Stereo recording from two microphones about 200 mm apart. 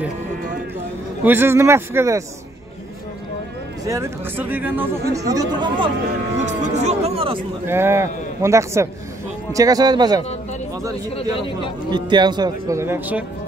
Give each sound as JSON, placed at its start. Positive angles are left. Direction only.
{"t": 1.2, "sound": "a man's voice", "side_deg": -10}
{"t": 3.8, "sound": "a man's voice", "side_deg": -15}
{"t": 6.4, "sound": "speech", "side_deg": -35}
{"t": 7.6, "sound": "a man's voice", "side_deg": -10}
{"t": 11.1, "sound": "speech", "side_deg": 30}
{"t": 11.9, "sound": "speech", "side_deg": -20}